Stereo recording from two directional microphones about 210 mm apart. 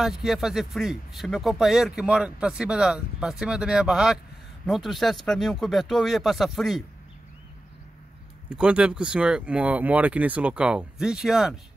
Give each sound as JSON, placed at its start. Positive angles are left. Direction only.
{"t": 0.0, "sound": "speech", "side_deg": 0}
{"t": 8.5, "sound": "speech", "side_deg": -5}